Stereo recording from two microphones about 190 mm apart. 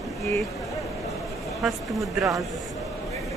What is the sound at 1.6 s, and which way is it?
Speech, centre (ahead or behind).